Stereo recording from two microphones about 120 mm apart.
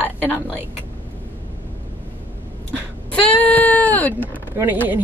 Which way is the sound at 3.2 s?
10° left (ahead or behind).